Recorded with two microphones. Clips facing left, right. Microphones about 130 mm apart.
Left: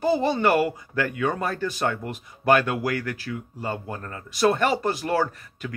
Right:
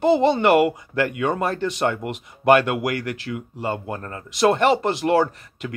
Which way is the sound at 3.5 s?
60° right (ahead or behind).